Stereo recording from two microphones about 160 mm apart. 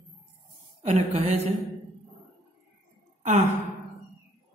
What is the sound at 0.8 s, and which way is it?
Speech, 40° right (ahead or behind).